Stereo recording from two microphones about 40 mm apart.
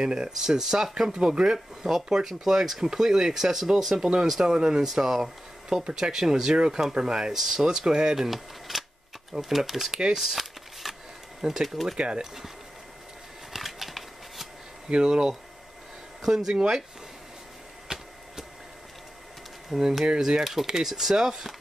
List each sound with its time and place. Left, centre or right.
0.0 s speech: centre
7.3 s speech: centre
8.2 s speech: centre
10.1 s a sound: centre
11.4 s speech: centre
12.0 s speech: centre
13.5 s a sound: centre
14.9 s speech: right
17.9 s a sound: centre
19.8 s speech: centre